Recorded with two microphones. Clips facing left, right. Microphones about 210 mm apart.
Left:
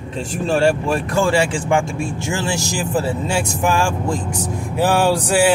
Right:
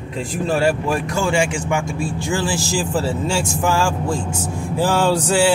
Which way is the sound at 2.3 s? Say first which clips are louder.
Right 1 dB; 20° left (ahead or behind).